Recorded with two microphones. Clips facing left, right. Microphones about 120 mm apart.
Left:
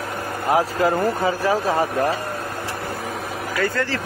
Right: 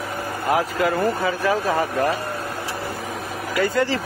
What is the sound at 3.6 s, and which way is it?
Speech, 15° right (ahead or behind).